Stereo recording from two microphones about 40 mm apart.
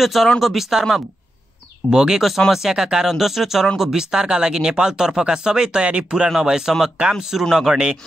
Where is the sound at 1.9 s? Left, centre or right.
Centre.